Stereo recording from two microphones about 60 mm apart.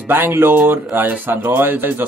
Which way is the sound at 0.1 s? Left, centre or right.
Right.